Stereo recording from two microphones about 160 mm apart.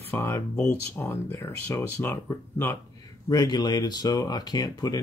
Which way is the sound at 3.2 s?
25° left (ahead or behind).